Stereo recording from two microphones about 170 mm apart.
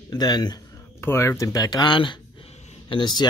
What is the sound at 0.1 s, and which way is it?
Speech, 25° left (ahead or behind).